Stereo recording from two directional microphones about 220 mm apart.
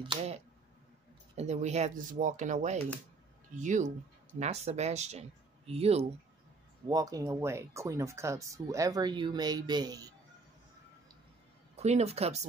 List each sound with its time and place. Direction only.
1.3 s speech: 30° right (ahead or behind)
6.9 s speech: 15° right (ahead or behind)
11.7 s speech: 30° right (ahead or behind)